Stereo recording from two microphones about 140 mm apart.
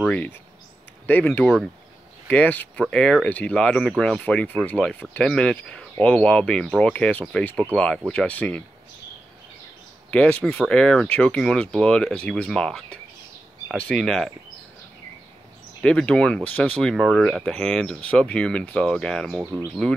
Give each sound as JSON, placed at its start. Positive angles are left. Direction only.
{"t": 0.1, "sound": "speech", "side_deg": 10}
{"t": 10.1, "sound": "speech", "side_deg": 10}
{"t": 15.8, "sound": "speech", "side_deg": 5}
{"t": 19.4, "sound": "speech", "side_deg": -15}